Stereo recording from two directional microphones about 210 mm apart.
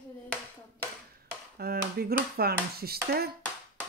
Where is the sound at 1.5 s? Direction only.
45° right (ahead or behind).